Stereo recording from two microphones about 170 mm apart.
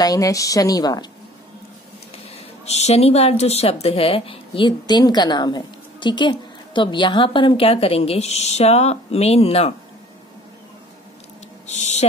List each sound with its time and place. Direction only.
0.0 s a woman's voice: 20° left (ahead or behind)
2.6 s a woman's voice: 40° left (ahead or behind)
11.6 s a sound: 40° left (ahead or behind)